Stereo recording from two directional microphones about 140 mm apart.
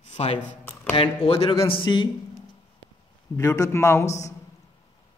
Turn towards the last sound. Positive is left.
turn(degrees=20)  # may be behind; listen again after turning